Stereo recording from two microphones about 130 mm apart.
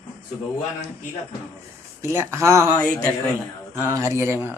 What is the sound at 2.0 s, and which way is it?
Speech, 20° right (ahead or behind).